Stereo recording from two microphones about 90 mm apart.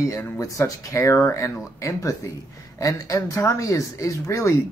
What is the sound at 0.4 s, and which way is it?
Speech, 35° left (ahead or behind).